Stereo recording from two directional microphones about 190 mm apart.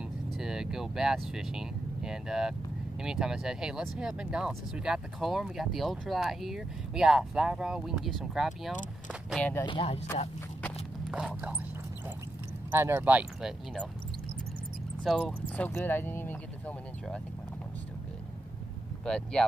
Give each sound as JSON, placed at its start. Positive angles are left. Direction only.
{"t": 0.4, "sound": "speech", "side_deg": -5}
{"t": 9.7, "sound": "speech", "side_deg": 30}
{"t": 11.1, "sound": "speech", "side_deg": -5}
{"t": 12.7, "sound": "speech", "side_deg": -10}
{"t": 15.0, "sound": "speech", "side_deg": 0}
{"t": 19.0, "sound": "speech", "side_deg": 5}